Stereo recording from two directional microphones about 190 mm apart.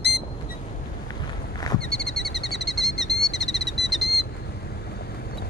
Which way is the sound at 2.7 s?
Centre (ahead or behind).